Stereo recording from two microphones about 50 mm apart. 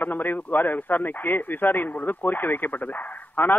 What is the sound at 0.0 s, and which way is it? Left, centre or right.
Speech, left.